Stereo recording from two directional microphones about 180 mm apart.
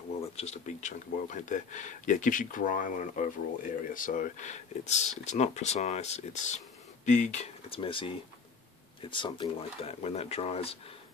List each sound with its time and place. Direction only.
0.4 s speech: 40° left (ahead or behind)